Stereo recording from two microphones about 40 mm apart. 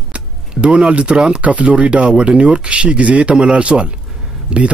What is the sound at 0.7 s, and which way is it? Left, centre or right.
Speech, centre.